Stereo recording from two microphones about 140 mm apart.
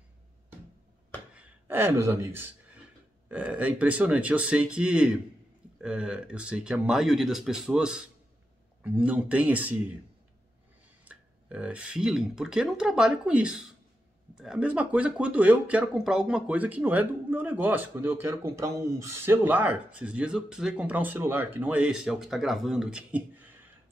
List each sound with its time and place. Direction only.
1.3 s speech: 10° right (ahead or behind)
11.1 s speech: 10° right (ahead or behind)